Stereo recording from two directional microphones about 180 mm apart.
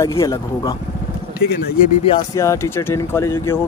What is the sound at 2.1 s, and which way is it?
Speech, 20° left (ahead or behind).